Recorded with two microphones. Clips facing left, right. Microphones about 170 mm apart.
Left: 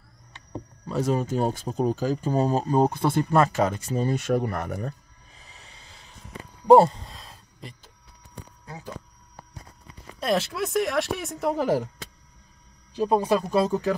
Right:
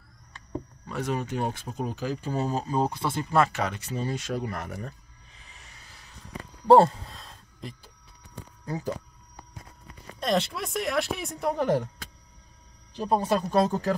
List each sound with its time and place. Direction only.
0.8 s speech: 35° left (ahead or behind)
4.1 s speech: 55° left (ahead or behind)
5.4 s music: 35° left (ahead or behind)
6.9 s a sound: centre (ahead or behind)
8.6 s speech: 40° right (ahead or behind)
10.2 s speech: 5° left (ahead or behind)
13.0 s speech: 10° left (ahead or behind)